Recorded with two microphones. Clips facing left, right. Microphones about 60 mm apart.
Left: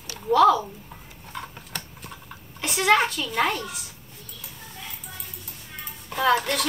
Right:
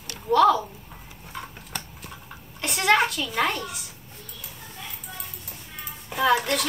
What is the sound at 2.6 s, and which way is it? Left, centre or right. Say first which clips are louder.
A child's voice: left 1 dB; centre.